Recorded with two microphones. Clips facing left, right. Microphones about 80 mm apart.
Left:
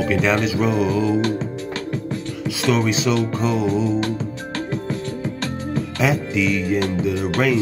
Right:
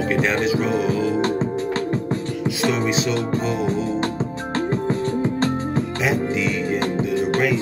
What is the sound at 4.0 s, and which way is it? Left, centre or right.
Music, right.